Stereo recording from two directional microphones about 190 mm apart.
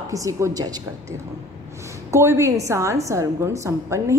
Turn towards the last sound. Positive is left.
turn(degrees=-15)  # may be behind; listen again after turning